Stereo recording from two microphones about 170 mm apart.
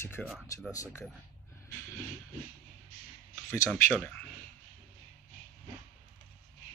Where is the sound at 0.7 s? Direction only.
20° left (ahead or behind).